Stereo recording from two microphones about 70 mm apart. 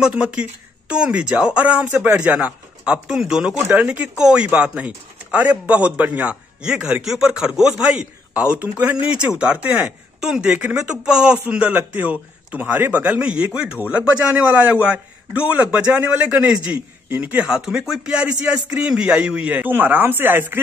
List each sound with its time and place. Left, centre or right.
0.0 s a man's voice: centre
6.6 s a man's voice: centre
15.9 s a man's voice: right
16.2 s a man's voice: centre
17.5 s speech: centre; by 20.6 s right